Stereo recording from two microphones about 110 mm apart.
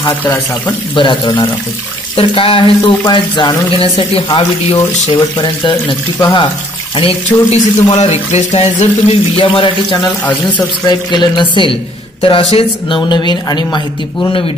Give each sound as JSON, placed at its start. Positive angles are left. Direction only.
{"t": 0.2, "sound": "speech", "side_deg": 15}
{"t": 0.9, "sound": "a man's voice", "side_deg": 45}
{"t": 3.8, "sound": "speech", "side_deg": 65}
{"t": 4.6, "sound": "a man's voice", "side_deg": 50}
{"t": 9.4, "sound": "a man's voice", "side_deg": 50}